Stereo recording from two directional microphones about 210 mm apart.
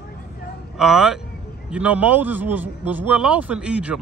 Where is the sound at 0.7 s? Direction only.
Centre (ahead or behind).